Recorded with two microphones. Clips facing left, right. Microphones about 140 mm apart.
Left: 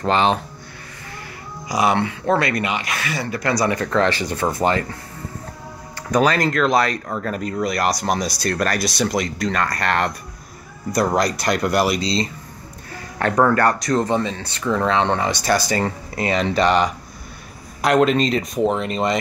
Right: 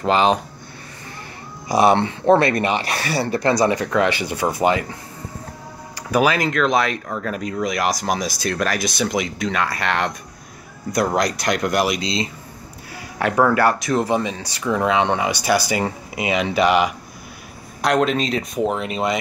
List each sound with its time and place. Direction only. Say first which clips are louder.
0.0 s speech: right 1 dB; 10° right (ahead or behind)
1.7 s speech: right 3 dB; 30° right (ahead or behind); by 4.8 s 5° right (ahead or behind)
6.1 s speech: even; 5° right (ahead or behind)
11.1 s speech: left 1 dB; centre (ahead or behind)